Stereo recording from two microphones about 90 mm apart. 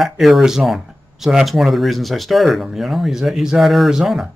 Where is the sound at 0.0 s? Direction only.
Centre (ahead or behind).